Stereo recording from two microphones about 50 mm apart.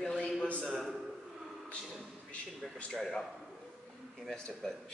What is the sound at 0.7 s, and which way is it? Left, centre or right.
Speech, centre.